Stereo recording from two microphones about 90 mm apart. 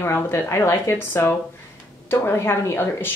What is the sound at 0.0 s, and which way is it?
Speech, 30° left (ahead or behind).